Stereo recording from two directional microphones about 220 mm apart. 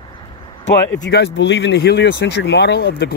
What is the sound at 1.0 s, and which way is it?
Speech, 50° left (ahead or behind).